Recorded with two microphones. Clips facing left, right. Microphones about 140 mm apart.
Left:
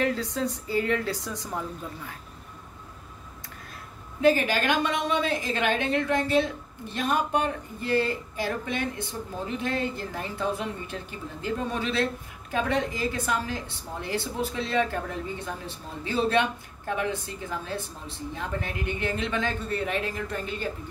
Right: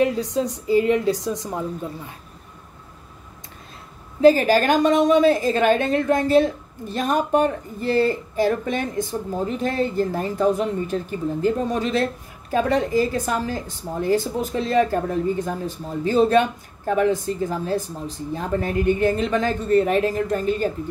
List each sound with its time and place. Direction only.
0.0 s a woman's voice: 20° right (ahead or behind)
4.2 s a woman's voice: 35° right (ahead or behind)